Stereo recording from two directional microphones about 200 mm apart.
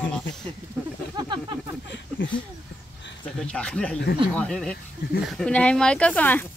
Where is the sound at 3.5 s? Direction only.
5° left (ahead or behind).